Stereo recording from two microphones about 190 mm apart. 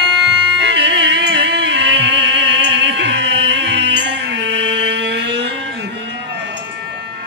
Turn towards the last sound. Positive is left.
turn(degrees=-65)  # may be behind; listen again after turning